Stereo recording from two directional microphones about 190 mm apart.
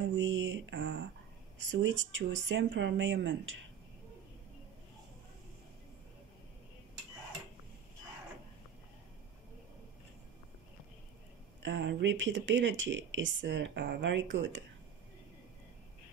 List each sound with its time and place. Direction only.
0.2 s mantra: 80° right
1.7 s speech: 75° right (ahead or behind)
11.6 s speech: 65° right (ahead or behind)
14.3 s speech: 75° right (ahead or behind)